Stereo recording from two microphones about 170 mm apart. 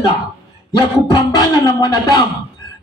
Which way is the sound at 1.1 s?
20° left (ahead or behind).